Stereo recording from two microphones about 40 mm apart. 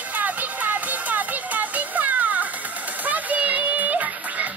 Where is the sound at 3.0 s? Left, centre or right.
Right.